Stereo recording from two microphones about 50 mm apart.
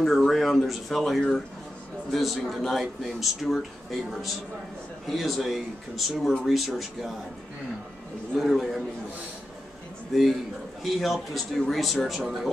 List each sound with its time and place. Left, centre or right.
0.0 s speech: centre
8.4 s speech: centre
10.1 s speech: centre